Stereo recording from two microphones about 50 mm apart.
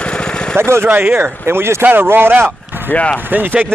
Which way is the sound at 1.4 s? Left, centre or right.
Right.